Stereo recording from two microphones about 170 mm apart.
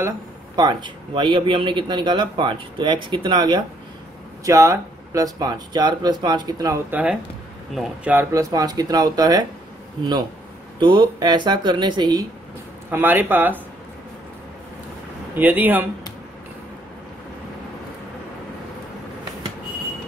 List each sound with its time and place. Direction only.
0.6 s speech: 25° right (ahead or behind)
6.9 s speech: 10° right (ahead or behind)
10.8 s speech: 30° right (ahead or behind)
12.9 s speech: 10° right (ahead or behind)
15.3 s speech: 10° right (ahead or behind)